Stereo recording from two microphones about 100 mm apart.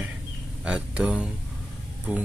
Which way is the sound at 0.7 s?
10° right (ahead or behind).